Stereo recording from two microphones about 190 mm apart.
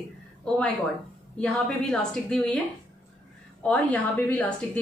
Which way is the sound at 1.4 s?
5° left (ahead or behind).